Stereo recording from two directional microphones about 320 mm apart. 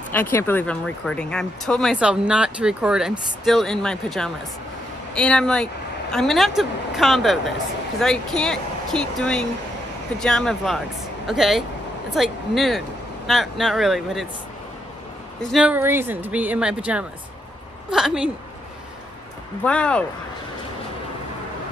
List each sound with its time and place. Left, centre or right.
0.1 s speech: centre
15.4 s speech: centre
19.6 s speech: centre